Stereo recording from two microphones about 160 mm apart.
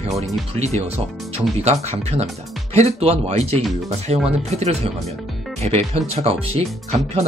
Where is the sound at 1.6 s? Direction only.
40° right (ahead or behind).